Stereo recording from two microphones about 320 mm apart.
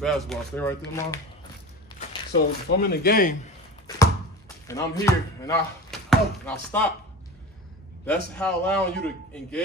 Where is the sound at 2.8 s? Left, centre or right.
Left.